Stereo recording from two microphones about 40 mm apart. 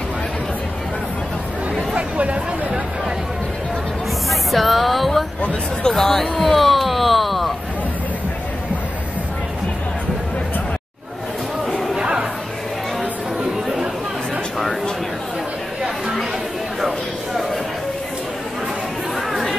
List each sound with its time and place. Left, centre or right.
2.0 s chatter: right
4.3 s music: centre
5.9 s speech: centre
12.0 s crowd: right